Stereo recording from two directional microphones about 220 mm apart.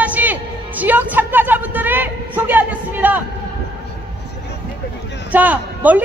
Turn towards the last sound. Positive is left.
turn(degrees=-5)  # may be behind; listen again after turning